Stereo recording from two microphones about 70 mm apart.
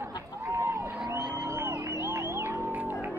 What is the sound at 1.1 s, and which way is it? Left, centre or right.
Music, right.